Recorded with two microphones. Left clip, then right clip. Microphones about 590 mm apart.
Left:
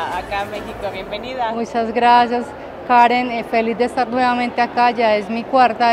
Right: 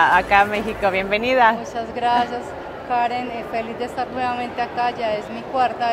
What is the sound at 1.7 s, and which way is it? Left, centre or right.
A woman's voice, left.